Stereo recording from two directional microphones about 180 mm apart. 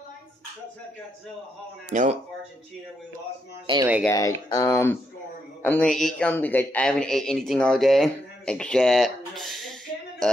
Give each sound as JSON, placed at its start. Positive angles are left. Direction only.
{"t": 1.9, "sound": "speech", "side_deg": -40}
{"t": 3.7, "sound": "speech", "side_deg": -30}
{"t": 4.0, "sound": "a man's voice", "side_deg": 20}